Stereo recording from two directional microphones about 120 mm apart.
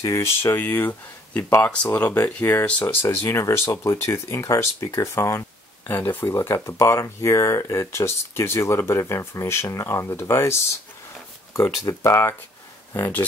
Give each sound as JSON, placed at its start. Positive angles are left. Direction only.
{"t": 0.0, "sound": "speech", "side_deg": 20}